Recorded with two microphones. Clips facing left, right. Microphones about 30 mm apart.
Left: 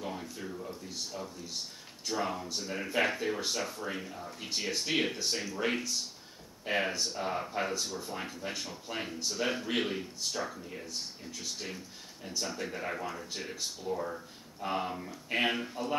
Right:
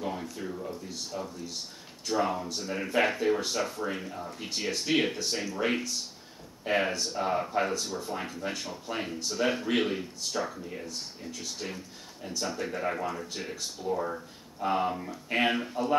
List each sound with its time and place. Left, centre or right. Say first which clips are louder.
0.0 s a sound: right 4 dB; centre
0.7 s speech: right 3 dB; centre
13.9 s speech: right 4 dB; centre